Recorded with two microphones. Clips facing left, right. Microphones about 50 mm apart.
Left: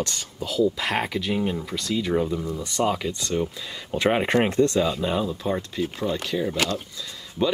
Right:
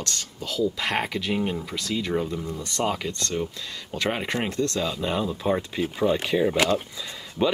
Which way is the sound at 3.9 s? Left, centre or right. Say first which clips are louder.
Left 6 dB; centre.